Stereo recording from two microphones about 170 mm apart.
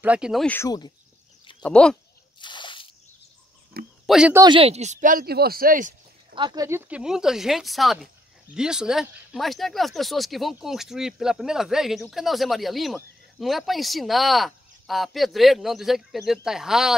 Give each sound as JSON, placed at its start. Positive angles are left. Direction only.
{"t": 0.0, "sound": "speech", "side_deg": -5}
{"t": 0.5, "sound": "speech", "side_deg": 20}
{"t": 1.6, "sound": "speech", "side_deg": 5}
{"t": 2.4, "sound": "drip", "side_deg": 30}
{"t": 4.0, "sound": "a sound", "side_deg": 0}
{"t": 4.5, "sound": "speech", "side_deg": -35}
{"t": 6.3, "sound": "speech", "side_deg": -25}